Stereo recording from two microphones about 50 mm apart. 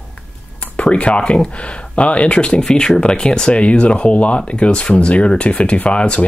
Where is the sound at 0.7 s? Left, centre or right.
Left.